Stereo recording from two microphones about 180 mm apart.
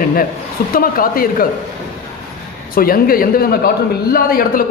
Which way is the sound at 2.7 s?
55° left (ahead or behind).